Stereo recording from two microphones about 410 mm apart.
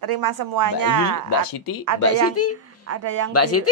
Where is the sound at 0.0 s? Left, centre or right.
Right.